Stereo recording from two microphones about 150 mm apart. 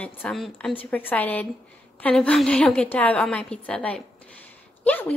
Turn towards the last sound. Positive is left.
turn(degrees=10)  # may be behind; listen again after turning